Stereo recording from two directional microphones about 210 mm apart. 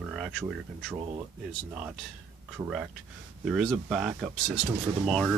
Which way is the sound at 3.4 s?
Centre (ahead or behind).